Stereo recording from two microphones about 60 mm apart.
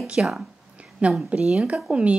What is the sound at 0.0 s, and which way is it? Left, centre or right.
A woman's voice, centre.